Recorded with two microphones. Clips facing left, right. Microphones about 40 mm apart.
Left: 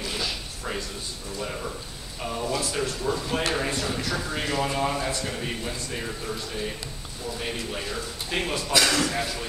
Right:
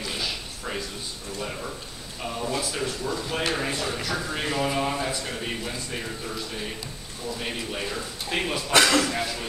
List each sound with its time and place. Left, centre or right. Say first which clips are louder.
0.1 s a sound: even; centre
1.4 s speech: left 1 dB; centre
2.2 s a sound: left 1 dB; centre
3.0 s speech: left 1 dB; centre
8.7 s speech: right 3 dB; right
9.0 s speech: even; centre